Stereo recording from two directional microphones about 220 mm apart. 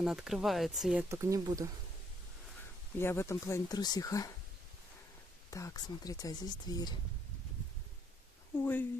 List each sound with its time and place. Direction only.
0.0 s speech: centre (ahead or behind)
3.0 s speech: 10° left (ahead or behind)
5.5 s speech: 15° left (ahead or behind)
8.5 s speech: 10° left (ahead or behind)